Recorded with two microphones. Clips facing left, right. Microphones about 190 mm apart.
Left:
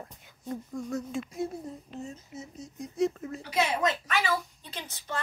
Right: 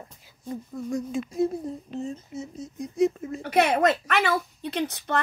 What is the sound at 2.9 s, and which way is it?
Speech, 10° right (ahead or behind).